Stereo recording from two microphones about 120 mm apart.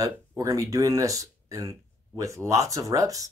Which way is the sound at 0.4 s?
25° right (ahead or behind).